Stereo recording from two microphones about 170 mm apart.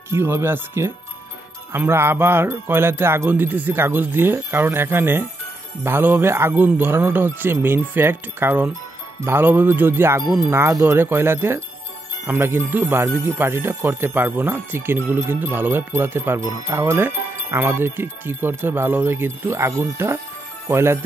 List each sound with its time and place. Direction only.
0.1 s speech: 15° right (ahead or behind)